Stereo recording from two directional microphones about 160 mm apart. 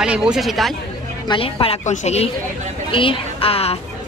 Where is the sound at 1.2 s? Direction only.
30° left (ahead or behind).